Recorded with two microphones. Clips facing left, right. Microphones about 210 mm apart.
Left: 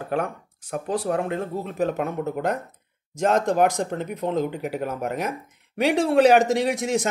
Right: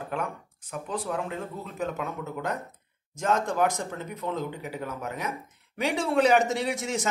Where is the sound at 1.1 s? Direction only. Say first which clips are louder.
Left 8 dB; 60° left (ahead or behind).